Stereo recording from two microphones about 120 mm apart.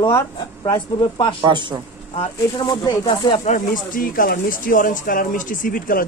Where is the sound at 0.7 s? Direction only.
40° left (ahead or behind).